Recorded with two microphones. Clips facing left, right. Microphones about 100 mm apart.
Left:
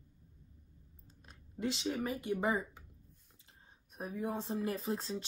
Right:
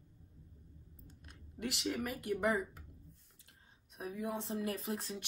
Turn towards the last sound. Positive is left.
turn(degrees=30)  # may be behind; listen again after turning